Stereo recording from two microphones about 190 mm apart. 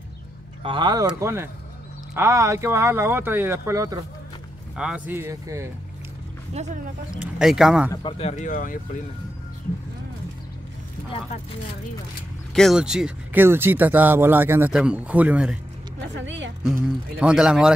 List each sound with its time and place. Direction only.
0.7 s speech: 25° right (ahead or behind)
6.5 s speech: 35° right (ahead or behind)
7.2 s speech: 5° right (ahead or behind)
7.9 s speech: 25° left (ahead or behind); by 8.7 s 45° left (ahead or behind)
12.5 s speech: centre (ahead or behind)
16.2 s a woman's voice: 75° right (ahead or behind)
16.8 s speech: 5° right (ahead or behind)